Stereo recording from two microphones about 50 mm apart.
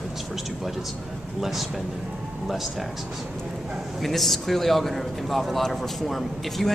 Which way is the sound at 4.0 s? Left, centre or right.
Centre.